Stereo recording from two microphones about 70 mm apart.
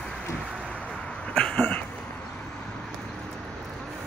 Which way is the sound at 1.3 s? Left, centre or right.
Centre.